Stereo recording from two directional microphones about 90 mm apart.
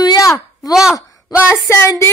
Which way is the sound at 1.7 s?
30° left (ahead or behind).